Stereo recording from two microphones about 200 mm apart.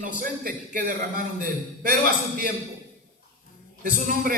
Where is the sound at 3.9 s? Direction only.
45° right (ahead or behind).